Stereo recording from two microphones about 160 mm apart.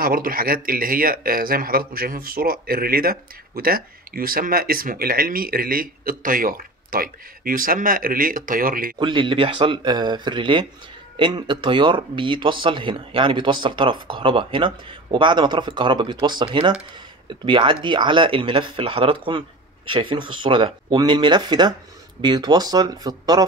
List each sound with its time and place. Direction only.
0.0 s speech: 65° right (ahead or behind)
8.9 s speech: 30° right (ahead or behind)